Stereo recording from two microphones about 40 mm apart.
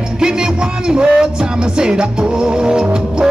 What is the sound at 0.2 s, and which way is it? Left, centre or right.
Music, centre.